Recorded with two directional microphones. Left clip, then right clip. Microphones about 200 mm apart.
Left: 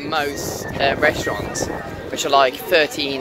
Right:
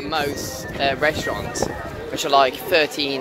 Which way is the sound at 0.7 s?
10° left (ahead or behind).